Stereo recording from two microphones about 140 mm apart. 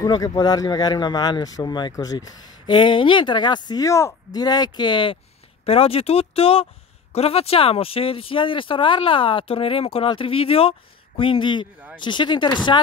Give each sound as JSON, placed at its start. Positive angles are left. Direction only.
{"t": 0.0, "sound": "speech", "side_deg": 25}